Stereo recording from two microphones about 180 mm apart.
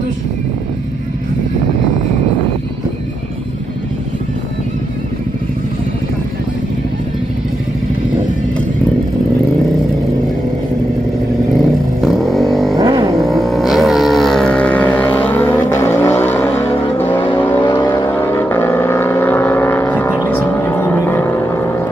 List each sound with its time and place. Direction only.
12.0 s vehicle: centre (ahead or behind)
12.7 s a sound: 20° right (ahead or behind)
13.3 s vehicle: centre (ahead or behind)